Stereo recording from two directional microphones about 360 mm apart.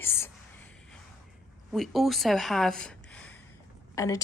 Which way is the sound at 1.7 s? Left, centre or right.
Centre.